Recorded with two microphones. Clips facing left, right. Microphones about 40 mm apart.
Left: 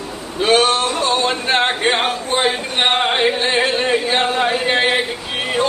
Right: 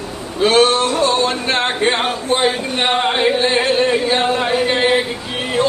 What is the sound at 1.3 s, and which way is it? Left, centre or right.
Speech, centre.